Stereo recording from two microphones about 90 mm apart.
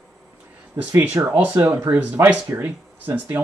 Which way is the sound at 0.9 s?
20° right (ahead or behind).